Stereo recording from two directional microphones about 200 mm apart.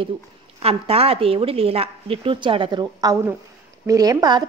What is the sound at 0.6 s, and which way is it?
A woman's voice, 30° right (ahead or behind).